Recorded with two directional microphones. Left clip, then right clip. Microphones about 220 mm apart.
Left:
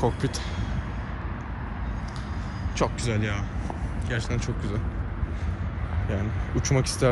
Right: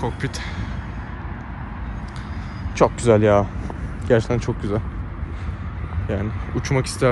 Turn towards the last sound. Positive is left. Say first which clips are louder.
# right 4 dB
turn(degrees=10)  # may be behind; listen again after turning